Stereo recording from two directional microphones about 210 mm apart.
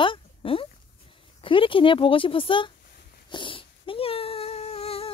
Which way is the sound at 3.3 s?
25° left (ahead or behind).